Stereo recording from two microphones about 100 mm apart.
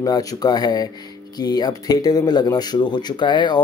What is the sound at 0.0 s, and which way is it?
Speech, 35° left (ahead or behind).